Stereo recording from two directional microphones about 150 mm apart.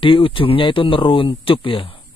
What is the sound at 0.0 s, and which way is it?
Speech, 35° left (ahead or behind).